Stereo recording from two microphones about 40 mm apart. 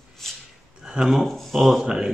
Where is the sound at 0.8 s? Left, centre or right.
Centre.